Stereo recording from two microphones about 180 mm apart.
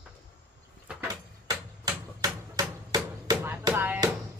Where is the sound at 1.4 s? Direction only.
20° right (ahead or behind).